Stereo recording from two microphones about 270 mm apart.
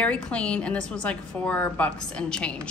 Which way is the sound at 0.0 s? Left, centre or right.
Centre.